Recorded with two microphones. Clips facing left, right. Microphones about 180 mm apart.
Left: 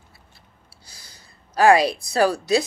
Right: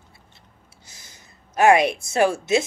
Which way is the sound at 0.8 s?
20° right (ahead or behind).